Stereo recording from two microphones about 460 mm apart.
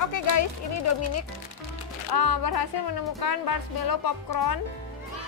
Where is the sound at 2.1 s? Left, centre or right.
Left.